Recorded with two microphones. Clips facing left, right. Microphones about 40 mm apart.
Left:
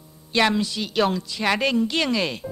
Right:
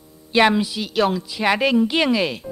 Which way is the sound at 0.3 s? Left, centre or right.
Centre.